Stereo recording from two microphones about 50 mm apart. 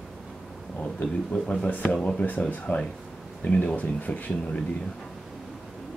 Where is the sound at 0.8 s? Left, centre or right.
Left.